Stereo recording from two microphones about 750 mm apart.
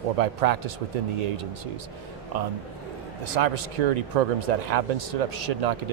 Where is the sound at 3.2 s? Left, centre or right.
Right.